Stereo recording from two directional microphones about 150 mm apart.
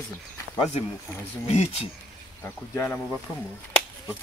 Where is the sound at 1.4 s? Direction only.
45° left (ahead or behind).